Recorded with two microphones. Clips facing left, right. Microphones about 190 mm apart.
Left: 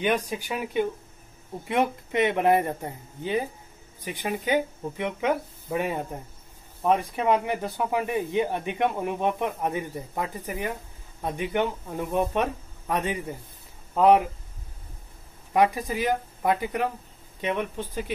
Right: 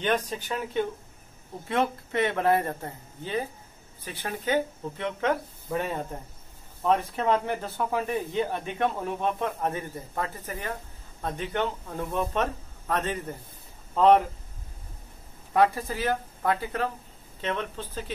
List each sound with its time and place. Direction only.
0.0 s speech: 10° left (ahead or behind)
15.5 s speech: 15° left (ahead or behind)